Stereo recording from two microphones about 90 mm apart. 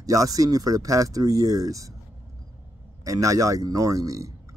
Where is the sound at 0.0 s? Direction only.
40° right (ahead or behind).